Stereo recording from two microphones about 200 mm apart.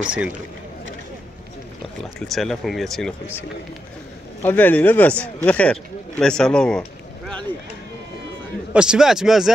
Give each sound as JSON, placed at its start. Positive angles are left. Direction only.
{"t": 0.0, "sound": "speech", "side_deg": -5}
{"t": 2.1, "sound": "speech", "side_deg": 0}
{"t": 4.4, "sound": "speech", "side_deg": 10}
{"t": 8.7, "sound": "speech", "side_deg": -5}